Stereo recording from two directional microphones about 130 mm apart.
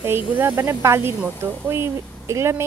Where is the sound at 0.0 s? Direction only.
15° right (ahead or behind).